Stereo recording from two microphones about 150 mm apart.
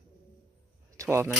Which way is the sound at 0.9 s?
20° right (ahead or behind).